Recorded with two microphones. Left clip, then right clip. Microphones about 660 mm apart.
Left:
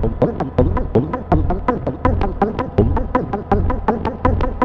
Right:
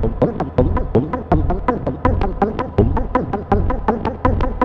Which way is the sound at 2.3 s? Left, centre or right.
Left.